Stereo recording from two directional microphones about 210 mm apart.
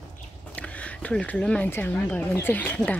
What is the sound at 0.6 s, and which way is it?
Speech, 5° left (ahead or behind).